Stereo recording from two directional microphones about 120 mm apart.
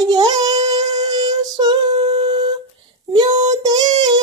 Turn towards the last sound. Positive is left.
turn(degrees=-35)  # may be behind; listen again after turning